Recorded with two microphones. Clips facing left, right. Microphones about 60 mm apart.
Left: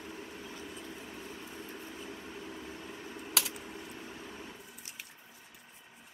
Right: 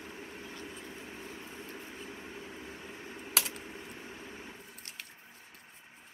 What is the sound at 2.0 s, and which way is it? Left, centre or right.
Vehicle, centre.